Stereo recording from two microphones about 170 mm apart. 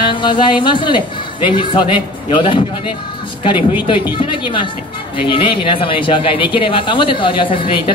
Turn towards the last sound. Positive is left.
turn(degrees=30)  # may be behind; listen again after turning